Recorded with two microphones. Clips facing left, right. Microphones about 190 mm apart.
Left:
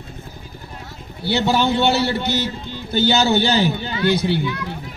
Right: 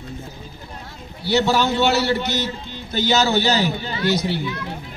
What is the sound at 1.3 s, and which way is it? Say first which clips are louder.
A man's voice: even; 25° left (ahead or behind).